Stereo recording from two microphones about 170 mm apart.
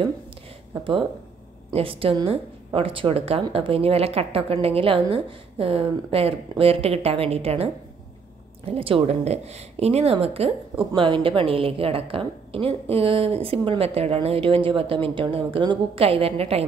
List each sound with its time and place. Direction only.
0.7 s a woman's voice: 35° right (ahead or behind)